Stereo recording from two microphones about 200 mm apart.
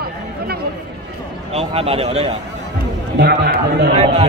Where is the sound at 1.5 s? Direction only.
30° right (ahead or behind).